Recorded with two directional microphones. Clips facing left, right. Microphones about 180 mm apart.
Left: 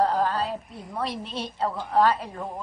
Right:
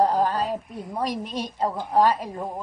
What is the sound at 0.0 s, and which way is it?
Speech, 15° right (ahead or behind).